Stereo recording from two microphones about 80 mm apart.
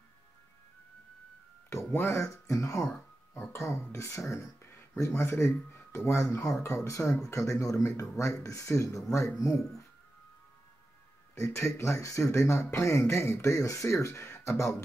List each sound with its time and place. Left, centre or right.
1.7 s speech: left
11.3 s speech: left